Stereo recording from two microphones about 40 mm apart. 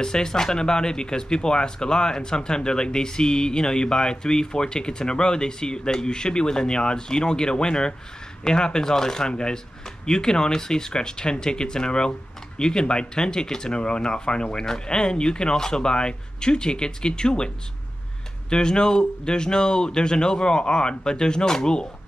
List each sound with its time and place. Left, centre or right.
0.0 s speech: centre
18.5 s speech: left